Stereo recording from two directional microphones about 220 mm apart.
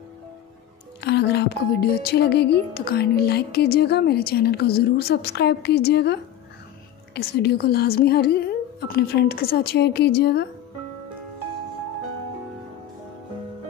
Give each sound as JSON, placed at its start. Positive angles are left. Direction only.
{"t": 1.0, "sound": "speech", "side_deg": 50}
{"t": 7.2, "sound": "speech", "side_deg": 45}